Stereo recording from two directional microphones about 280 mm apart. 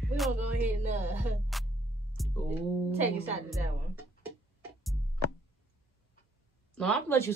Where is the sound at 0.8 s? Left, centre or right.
Centre.